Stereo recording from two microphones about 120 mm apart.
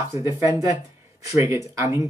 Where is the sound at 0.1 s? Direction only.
25° right (ahead or behind).